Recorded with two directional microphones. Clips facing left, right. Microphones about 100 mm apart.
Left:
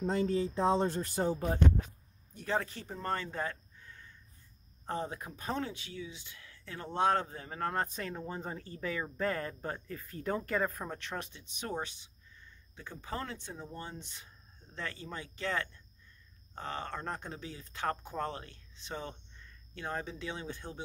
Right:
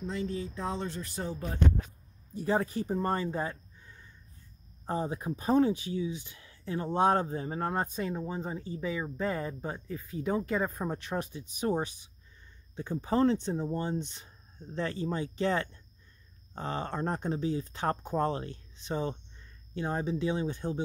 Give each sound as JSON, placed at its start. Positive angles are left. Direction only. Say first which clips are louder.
{"t": 0.0, "sound": "speech", "louder": "left 4 dB", "side_deg": 40}
{"t": 1.3, "sound": "speech", "louder": "left 4 dB", "side_deg": 25}
{"t": 2.5, "sound": "speech", "louder": "right 5 dB", "side_deg": -15}
{"t": 5.2, "sound": "speech", "louder": "right 11 dB", "side_deg": -30}
{"t": 8.0, "sound": "speech", "louder": "right 5 dB", "side_deg": -10}